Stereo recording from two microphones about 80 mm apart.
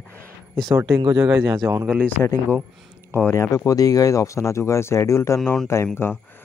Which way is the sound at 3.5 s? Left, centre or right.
Left.